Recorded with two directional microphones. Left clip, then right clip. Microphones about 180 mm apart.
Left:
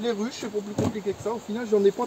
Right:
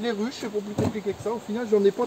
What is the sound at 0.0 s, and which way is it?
Speech, 20° left (ahead or behind).